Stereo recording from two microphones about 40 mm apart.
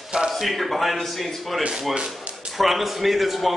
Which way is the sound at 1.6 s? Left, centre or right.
Right.